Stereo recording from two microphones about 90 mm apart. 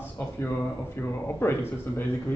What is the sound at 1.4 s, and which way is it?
Speech, 25° left (ahead or behind).